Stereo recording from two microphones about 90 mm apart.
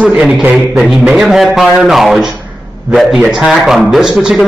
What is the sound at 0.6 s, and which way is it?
A man's voice, centre (ahead or behind).